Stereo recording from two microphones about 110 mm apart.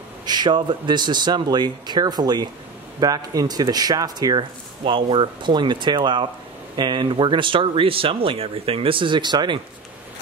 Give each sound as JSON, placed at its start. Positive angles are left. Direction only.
{"t": 0.2, "sound": "speech", "side_deg": -40}